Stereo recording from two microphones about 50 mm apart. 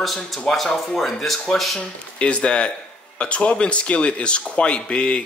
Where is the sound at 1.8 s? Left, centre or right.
Left.